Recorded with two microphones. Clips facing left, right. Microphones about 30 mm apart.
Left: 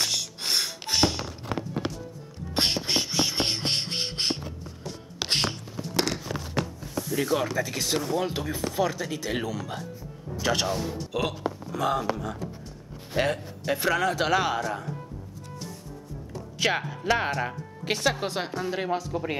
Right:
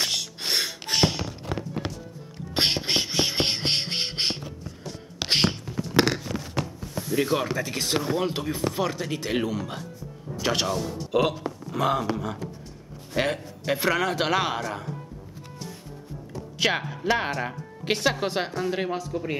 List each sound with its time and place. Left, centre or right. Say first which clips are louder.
0.0 s music: right 1 dB; centre
2.5 s a sound: right 2 dB; right
5.7 s a sound: right 5 dB; centre
7.0 s speech: right 1 dB; centre
11.1 s speech: right 6 dB; right
13.2 s speech: even; centre
16.5 s speech: right 1 dB; centre